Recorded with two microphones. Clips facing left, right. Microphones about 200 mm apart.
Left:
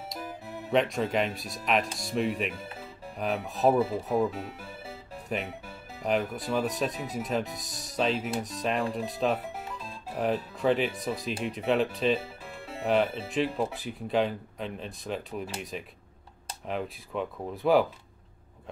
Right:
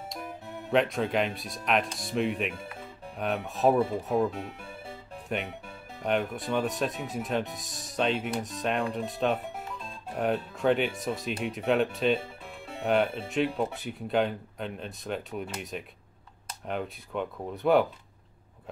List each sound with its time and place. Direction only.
0.1 s speech: centre (ahead or behind)